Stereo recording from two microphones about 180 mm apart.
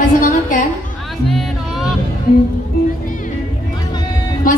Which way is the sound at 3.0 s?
50° left (ahead or behind).